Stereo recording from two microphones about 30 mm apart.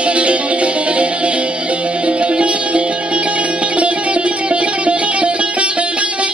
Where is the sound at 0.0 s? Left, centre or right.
Right.